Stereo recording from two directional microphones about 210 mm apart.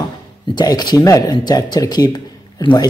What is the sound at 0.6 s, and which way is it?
Speech, 20° left (ahead or behind).